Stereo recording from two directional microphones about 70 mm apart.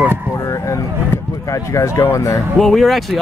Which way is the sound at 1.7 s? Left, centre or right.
Left.